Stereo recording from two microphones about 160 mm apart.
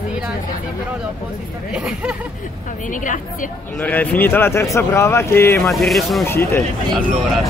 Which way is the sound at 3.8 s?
10° left (ahead or behind).